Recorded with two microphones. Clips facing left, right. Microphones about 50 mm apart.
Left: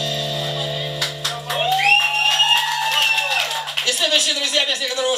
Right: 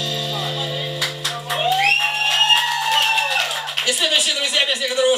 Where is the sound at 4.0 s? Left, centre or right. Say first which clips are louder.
Left 1 dB; centre.